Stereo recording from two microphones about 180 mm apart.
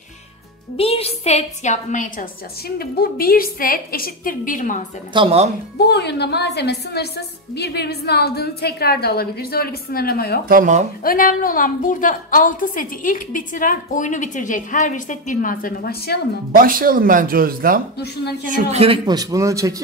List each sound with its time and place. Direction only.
0.7 s a woman's voice: 35° left (ahead or behind)
2.8 s a woman's voice: 55° left (ahead or behind)
5.1 s speech: 30° right (ahead or behind)
5.8 s a woman's voice: 65° left (ahead or behind)
10.5 s speech: 45° right (ahead or behind)
11.1 s a woman's voice: 50° left (ahead or behind)
16.5 s speech: 50° right (ahead or behind)
17.9 s a woman's voice: 65° left (ahead or behind)
18.5 s speech: 35° right (ahead or behind)
19.0 s a man's voice: 20° right (ahead or behind)